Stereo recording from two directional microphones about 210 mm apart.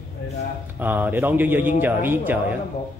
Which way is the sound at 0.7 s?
10° right (ahead or behind).